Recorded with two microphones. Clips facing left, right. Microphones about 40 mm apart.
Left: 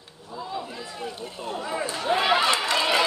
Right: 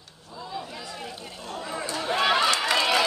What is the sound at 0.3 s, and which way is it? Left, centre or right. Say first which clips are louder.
Chatter: left 3 dB; centre.